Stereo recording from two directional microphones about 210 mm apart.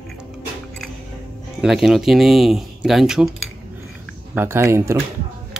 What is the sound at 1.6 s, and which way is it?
Speech, centre (ahead or behind).